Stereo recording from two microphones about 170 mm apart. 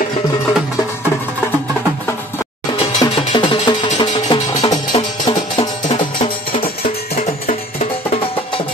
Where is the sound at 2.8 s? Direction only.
30° left (ahead or behind).